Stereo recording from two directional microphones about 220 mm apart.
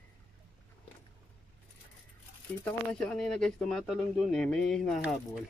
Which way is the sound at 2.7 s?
5° left (ahead or behind).